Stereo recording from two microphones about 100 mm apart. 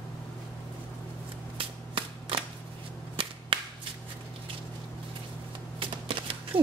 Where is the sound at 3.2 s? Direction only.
65° right (ahead or behind).